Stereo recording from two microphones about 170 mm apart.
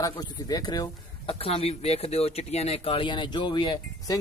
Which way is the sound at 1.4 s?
35° left (ahead or behind).